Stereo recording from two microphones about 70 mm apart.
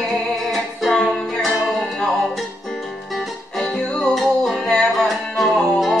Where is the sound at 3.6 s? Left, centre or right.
Centre.